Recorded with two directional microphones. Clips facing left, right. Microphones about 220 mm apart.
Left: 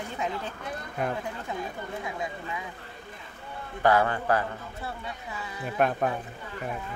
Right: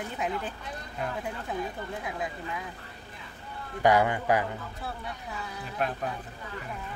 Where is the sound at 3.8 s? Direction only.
15° right (ahead or behind).